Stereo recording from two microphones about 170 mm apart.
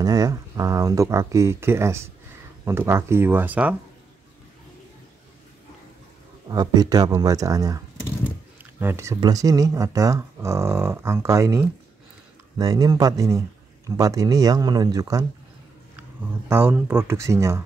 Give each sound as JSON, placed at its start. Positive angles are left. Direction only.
{"t": 0.0, "sound": "speech", "side_deg": -20}
{"t": 6.5, "sound": "speech", "side_deg": -25}